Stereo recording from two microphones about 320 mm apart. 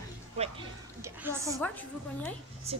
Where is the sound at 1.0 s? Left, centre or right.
Centre.